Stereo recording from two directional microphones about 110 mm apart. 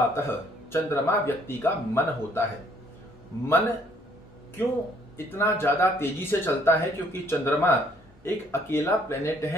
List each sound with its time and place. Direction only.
0.1 s speech: 20° left (ahead or behind)
3.4 s speech: 20° left (ahead or behind)
5.1 s speech: 25° left (ahead or behind)